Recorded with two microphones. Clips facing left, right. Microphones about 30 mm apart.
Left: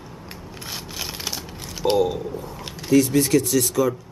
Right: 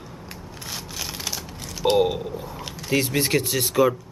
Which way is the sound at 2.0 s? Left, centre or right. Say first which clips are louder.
Even; right.